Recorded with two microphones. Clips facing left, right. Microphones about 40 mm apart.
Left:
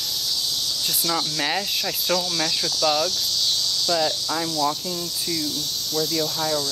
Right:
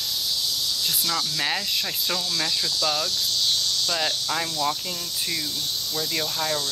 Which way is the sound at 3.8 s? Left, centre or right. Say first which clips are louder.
Left 3 dB; right.